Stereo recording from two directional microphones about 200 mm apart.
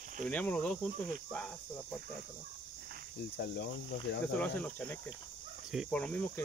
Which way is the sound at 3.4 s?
55° left (ahead or behind).